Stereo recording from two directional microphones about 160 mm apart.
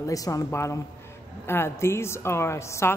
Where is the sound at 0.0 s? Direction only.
20° left (ahead or behind).